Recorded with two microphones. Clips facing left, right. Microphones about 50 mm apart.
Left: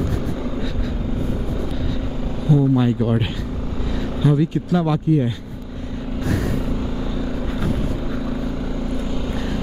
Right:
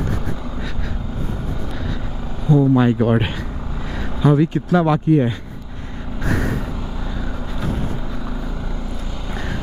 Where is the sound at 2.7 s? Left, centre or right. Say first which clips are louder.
Right 3 dB; right.